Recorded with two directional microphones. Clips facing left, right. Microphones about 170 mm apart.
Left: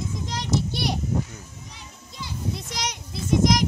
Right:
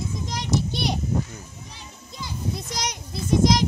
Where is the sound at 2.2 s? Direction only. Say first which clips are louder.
Right 1 dB; 40° right (ahead or behind).